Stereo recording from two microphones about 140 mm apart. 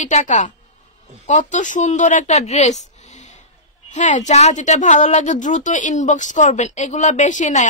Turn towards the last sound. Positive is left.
turn(degrees=60)  # may be behind; listen again after turning